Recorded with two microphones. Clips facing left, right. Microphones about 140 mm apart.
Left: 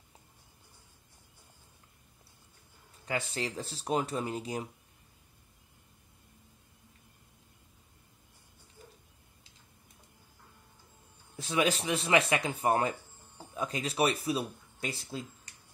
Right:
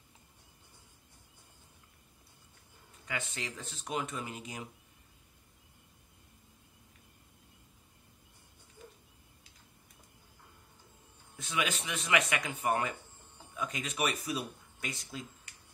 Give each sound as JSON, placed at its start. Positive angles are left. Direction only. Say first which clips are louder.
{"t": 3.1, "sound": "speech", "louder": "left 6 dB", "side_deg": 35}
{"t": 11.3, "sound": "speech", "louder": "left 6 dB", "side_deg": 35}